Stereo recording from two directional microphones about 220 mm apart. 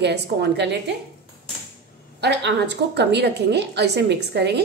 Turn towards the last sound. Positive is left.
turn(degrees=-50)  # may be behind; listen again after turning